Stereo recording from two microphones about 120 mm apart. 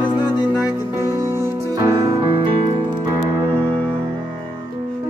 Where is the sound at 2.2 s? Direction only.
50° right (ahead or behind).